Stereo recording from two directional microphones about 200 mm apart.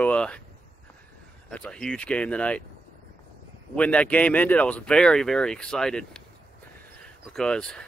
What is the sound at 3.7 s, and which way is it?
Speech, 5° left (ahead or behind).